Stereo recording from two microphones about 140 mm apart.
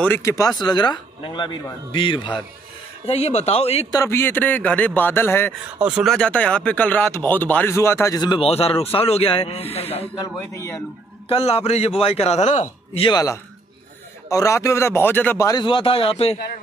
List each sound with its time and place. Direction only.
0.0 s speech: 15° left (ahead or behind); by 2.4 s 35° left (ahead or behind)
3.1 s speech: 50° left (ahead or behind)
3.9 s speech: 20° left (ahead or behind)
5.8 s speech: 5° right (ahead or behind)
6.1 s speech: 10° left (ahead or behind)
8.2 s speech: 40° left (ahead or behind)
10.5 s a man's voice: 20° left (ahead or behind)
11.2 s speech: 45° left (ahead or behind)
13.0 s a man's voice: 25° left (ahead or behind)
15.6 s speech: 40° left (ahead or behind)